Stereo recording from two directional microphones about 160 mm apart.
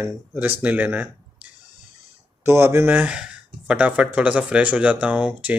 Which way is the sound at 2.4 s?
15° right (ahead or behind).